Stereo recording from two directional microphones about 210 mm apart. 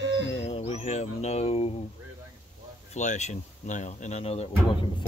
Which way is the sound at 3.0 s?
35° left (ahead or behind).